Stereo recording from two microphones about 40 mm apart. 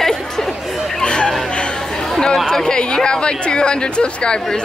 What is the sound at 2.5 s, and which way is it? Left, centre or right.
Speech, centre.